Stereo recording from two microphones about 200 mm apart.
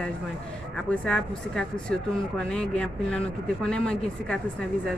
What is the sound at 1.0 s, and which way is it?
Speech, 5° left (ahead or behind).